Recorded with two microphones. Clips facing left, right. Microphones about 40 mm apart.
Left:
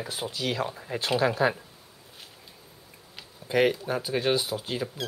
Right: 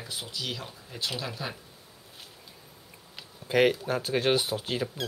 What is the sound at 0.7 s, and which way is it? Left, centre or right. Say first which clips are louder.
Speech: left 10 dB; left.